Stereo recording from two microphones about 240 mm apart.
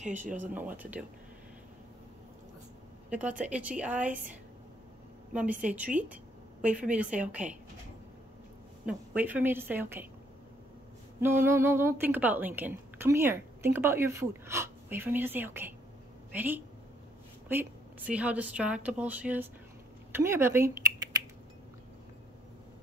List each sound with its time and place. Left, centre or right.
0.0 s speech: right
0.3 s a woman's voice: centre
3.1 s speech: centre
5.3 s speech: centre
8.8 s a woman's voice: centre
11.1 s a woman's voice: centre
20.1 s typing: centre